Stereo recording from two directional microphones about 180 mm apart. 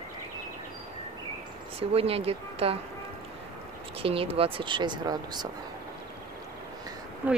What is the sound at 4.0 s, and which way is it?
Speech, 30° right (ahead or behind).